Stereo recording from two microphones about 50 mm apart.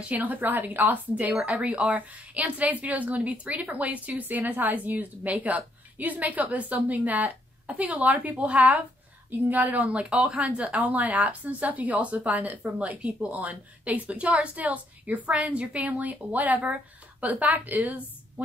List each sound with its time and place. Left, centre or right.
0.1 s a woman's voice: right